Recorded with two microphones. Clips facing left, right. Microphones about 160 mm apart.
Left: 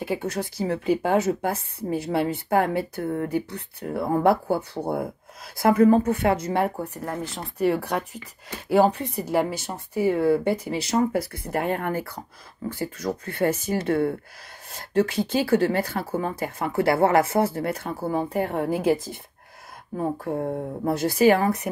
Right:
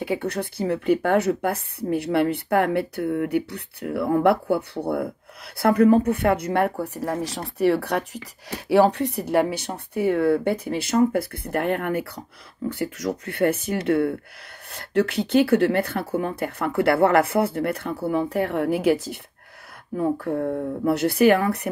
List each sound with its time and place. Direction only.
0.2 s speech: 60° right (ahead or behind)
20.8 s speech: 65° right (ahead or behind)